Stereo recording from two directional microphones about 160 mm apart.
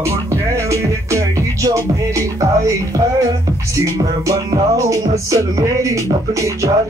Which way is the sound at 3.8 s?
20° right (ahead or behind).